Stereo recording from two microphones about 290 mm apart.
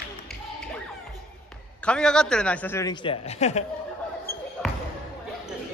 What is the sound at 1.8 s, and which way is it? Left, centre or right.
A man's voice, centre.